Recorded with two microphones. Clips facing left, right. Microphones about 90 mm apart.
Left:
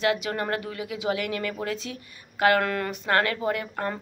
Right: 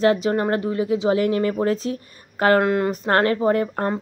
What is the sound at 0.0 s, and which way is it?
Speech, 35° right (ahead or behind).